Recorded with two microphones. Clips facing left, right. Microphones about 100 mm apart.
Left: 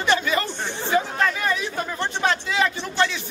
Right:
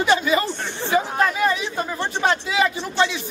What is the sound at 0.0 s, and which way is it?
Speech, 5° right (ahead or behind).